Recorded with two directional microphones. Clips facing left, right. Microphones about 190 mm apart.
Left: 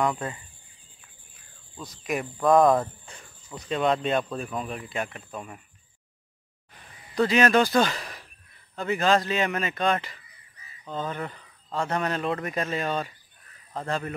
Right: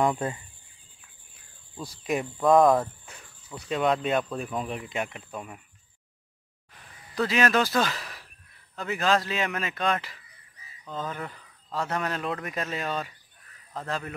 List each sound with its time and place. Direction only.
0.0 s speech: 25° right (ahead or behind)
1.9 s speech: 25° right (ahead or behind)
2.3 s speech: centre (ahead or behind)
4.4 s speech: 15° right (ahead or behind)
6.7 s a sound: centre (ahead or behind)
8.7 s speech: centre (ahead or behind)